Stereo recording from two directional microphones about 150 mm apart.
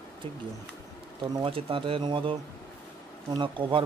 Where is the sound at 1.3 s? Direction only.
35° right (ahead or behind).